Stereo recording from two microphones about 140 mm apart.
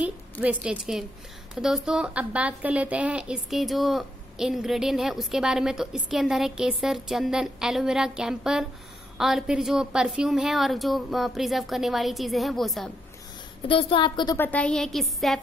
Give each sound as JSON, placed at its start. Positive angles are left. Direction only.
{"t": 0.0, "sound": "a woman's voice", "side_deg": -10}
{"t": 13.7, "sound": "a woman's voice", "side_deg": 40}
{"t": 14.3, "sound": "a woman's voice", "side_deg": 10}